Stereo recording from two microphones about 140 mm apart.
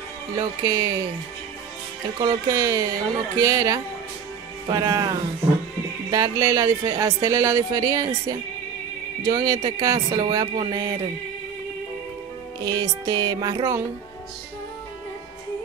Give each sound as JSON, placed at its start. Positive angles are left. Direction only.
{"t": 0.4, "sound": "speech", "side_deg": -25}
{"t": 2.1, "sound": "speech", "side_deg": -25}
{"t": 12.6, "sound": "speech", "side_deg": -25}